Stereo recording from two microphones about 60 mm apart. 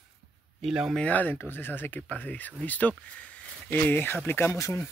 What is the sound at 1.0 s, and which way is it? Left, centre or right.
Speech, left.